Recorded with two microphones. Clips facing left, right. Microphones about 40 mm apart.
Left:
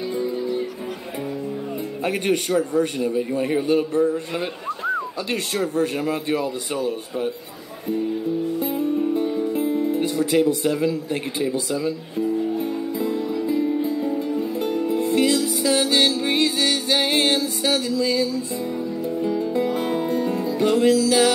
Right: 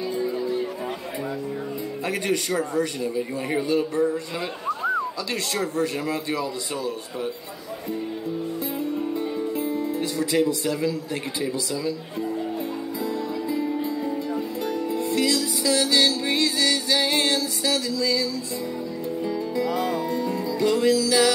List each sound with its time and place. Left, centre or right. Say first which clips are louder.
0.1 s music: left 2 dB; left
2.0 s a man's voice: left 3 dB; left
5.3 s a man's voice: left 5 dB; left
9.1 s music: left 5 dB; left
9.5 s speech: left 4 dB; left
12.5 s music: left 4 dB; left